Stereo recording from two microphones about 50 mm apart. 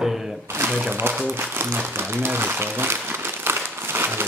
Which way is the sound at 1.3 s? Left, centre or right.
Right.